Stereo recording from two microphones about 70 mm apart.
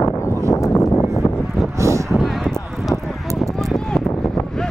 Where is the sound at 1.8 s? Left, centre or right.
Right.